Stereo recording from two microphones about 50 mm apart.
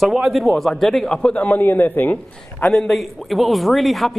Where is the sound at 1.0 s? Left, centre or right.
Centre.